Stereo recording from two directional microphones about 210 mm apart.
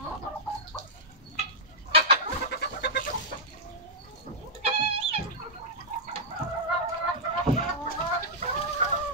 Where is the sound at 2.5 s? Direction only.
50° left (ahead or behind).